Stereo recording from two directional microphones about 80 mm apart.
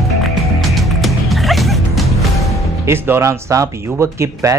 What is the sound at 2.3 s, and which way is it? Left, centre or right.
Music, left.